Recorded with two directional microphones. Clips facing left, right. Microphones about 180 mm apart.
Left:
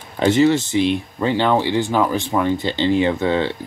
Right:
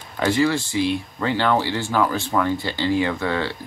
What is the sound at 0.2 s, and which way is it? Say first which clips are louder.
Speech: left 5 dB; 20° left (ahead or behind).